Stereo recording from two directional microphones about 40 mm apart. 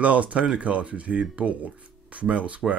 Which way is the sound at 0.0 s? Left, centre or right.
Right.